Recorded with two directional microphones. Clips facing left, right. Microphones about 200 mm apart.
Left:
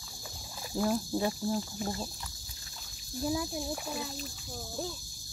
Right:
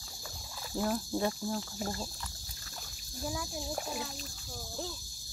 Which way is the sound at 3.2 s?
20° left (ahead or behind).